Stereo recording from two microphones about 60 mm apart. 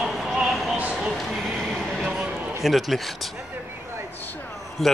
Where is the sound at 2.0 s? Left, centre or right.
Centre.